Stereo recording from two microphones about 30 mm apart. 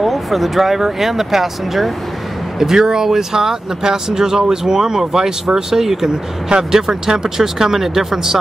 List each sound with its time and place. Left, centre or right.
0.0 s speech: centre
2.6 s speech: centre